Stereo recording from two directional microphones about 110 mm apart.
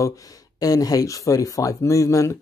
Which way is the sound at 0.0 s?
35° left (ahead or behind).